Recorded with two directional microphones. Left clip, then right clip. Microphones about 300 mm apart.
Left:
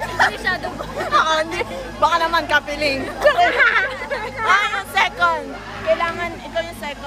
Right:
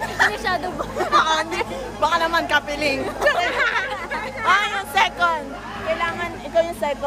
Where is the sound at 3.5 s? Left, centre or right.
Left.